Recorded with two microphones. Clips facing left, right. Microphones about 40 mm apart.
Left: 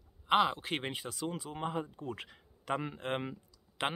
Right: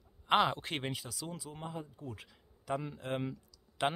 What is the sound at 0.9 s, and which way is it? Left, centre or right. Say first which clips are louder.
Speech: left 4 dB; left.